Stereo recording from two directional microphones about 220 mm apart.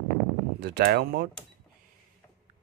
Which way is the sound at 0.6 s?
45° right (ahead or behind).